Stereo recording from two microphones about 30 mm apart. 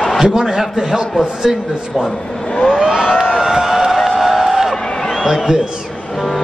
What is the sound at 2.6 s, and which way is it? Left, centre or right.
Vehicle, right.